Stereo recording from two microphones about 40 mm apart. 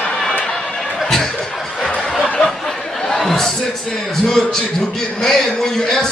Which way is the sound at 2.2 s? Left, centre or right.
Centre.